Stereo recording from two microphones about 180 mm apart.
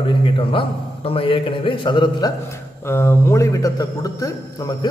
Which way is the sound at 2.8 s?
15° left (ahead or behind).